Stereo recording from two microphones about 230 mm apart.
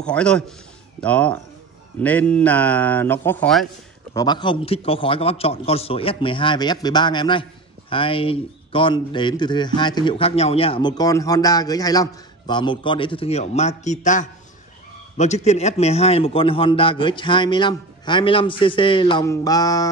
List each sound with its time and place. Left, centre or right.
0.0 s a man's voice: centre
4.1 s a man's voice: centre